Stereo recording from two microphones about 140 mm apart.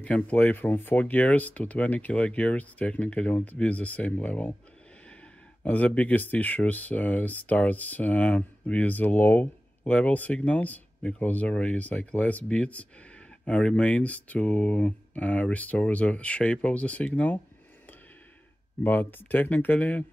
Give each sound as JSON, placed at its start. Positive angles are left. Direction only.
{"t": 0.0, "sound": "speech", "side_deg": 10}
{"t": 5.6, "sound": "speech", "side_deg": 10}
{"t": 18.8, "sound": "speech", "side_deg": 15}